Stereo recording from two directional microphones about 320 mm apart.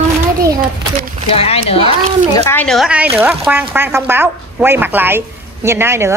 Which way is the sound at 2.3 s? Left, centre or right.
Centre.